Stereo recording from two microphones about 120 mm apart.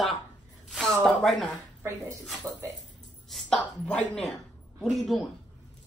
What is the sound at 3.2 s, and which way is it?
A woman's voice, 5° left (ahead or behind).